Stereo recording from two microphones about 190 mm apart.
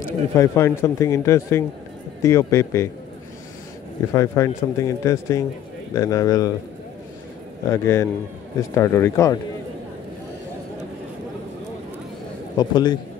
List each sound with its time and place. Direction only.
0.4 s speech: 15° left (ahead or behind)
4.1 s speech: 15° left (ahead or behind)
7.7 s speech: 15° left (ahead or behind)
12.5 s speech: 20° left (ahead or behind)